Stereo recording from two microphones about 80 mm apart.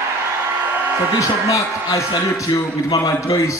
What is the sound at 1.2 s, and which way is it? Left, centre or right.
A man's voice, left.